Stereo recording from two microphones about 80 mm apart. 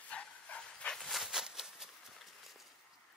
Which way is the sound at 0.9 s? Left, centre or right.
Centre.